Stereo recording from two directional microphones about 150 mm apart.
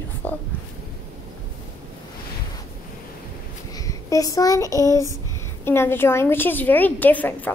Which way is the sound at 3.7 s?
20° left (ahead or behind).